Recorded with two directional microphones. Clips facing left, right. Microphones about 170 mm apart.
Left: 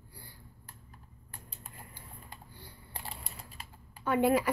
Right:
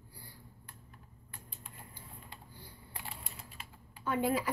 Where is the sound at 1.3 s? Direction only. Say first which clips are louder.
Left 2 dB; 40° left (ahead or behind).